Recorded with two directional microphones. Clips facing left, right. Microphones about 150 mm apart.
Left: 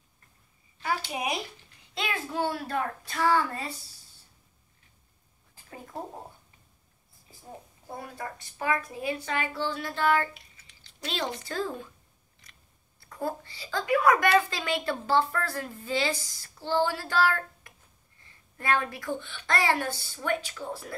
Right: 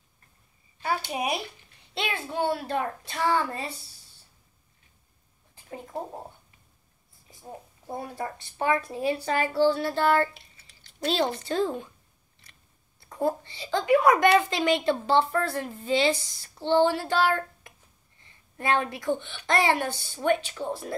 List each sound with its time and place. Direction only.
1.0 s a woman's voice: 30° right (ahead or behind)
7.9 s a woman's voice: 30° right (ahead or behind)
13.1 s a woman's voice: 25° right (ahead or behind)